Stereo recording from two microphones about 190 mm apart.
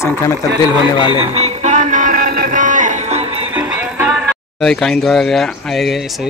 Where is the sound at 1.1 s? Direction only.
30° right (ahead or behind).